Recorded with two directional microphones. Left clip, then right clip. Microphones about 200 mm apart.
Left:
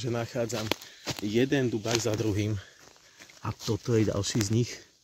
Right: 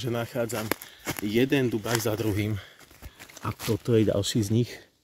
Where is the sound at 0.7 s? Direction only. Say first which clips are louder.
Right 1 dB; 10° right (ahead or behind).